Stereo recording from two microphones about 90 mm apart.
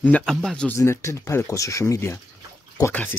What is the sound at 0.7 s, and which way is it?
Speech, 30° left (ahead or behind).